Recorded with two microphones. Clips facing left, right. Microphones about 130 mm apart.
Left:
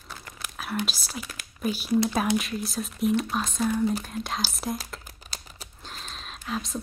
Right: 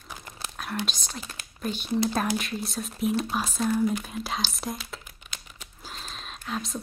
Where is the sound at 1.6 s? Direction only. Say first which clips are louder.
Left 3 dB; 5° left (ahead or behind).